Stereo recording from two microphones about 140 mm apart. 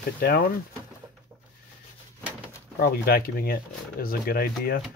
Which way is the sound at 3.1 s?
90° left.